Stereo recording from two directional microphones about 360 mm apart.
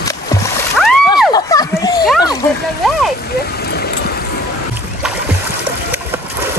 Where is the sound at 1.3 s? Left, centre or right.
Centre.